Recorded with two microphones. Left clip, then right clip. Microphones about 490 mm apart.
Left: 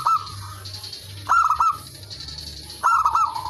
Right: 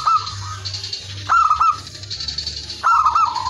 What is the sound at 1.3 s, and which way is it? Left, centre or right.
Fowl, left.